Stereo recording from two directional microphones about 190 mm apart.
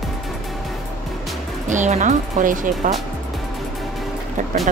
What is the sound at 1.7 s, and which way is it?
Speech, 40° right (ahead or behind).